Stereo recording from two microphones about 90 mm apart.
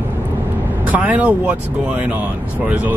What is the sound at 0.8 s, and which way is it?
Speech, 20° right (ahead or behind).